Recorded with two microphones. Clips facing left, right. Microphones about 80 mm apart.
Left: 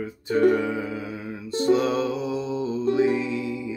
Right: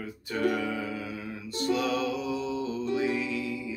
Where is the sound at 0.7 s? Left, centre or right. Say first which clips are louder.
Left 4 dB; left.